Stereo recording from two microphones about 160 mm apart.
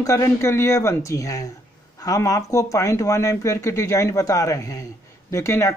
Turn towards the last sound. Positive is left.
turn(degrees=20)  # may be behind; listen again after turning